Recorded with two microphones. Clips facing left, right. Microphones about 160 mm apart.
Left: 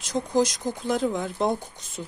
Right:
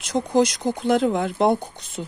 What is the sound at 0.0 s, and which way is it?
Speech, 70° right (ahead or behind).